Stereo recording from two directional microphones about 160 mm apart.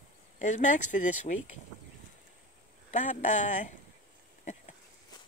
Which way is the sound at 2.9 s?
45° left (ahead or behind).